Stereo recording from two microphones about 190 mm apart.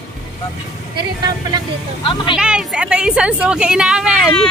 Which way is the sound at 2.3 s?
5° right (ahead or behind).